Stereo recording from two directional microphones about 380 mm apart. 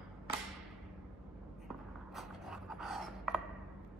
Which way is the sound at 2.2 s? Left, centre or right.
Centre.